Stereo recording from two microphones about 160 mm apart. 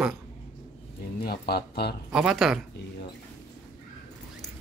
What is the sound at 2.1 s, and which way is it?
Speech, 5° right (ahead or behind).